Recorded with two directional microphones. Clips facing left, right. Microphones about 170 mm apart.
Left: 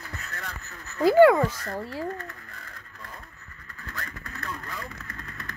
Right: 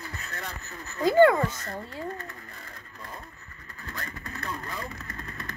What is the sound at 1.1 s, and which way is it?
Speech, 5° left (ahead or behind).